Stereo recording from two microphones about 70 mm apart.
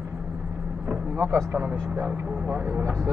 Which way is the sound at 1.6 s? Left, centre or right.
Centre.